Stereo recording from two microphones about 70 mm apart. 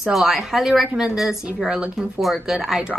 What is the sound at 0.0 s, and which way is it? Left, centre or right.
A woman's voice, centre.